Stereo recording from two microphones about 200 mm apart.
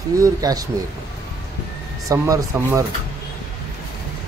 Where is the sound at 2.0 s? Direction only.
15° right (ahead or behind).